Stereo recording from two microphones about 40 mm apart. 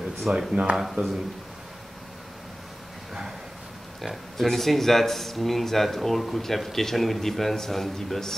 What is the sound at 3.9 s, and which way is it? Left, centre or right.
Speech, centre.